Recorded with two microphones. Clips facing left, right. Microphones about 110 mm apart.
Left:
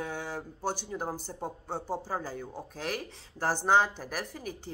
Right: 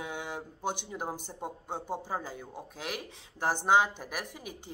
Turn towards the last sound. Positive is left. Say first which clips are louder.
# left 2 dB
turn(degrees=-15)  # may be behind; listen again after turning